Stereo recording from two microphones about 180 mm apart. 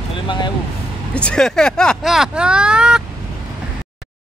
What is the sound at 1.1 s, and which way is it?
Speech, 5° left (ahead or behind).